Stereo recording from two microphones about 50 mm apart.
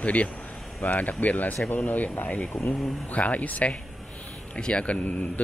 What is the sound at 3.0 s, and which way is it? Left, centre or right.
A man's voice, left.